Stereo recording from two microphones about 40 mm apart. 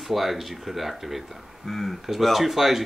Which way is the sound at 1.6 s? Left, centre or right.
Centre.